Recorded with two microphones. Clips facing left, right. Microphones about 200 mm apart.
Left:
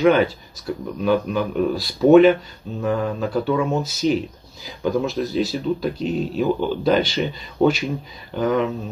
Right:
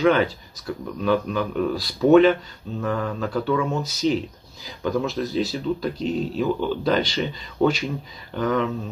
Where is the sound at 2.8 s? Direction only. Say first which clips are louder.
Left 4 dB; 20° left (ahead or behind).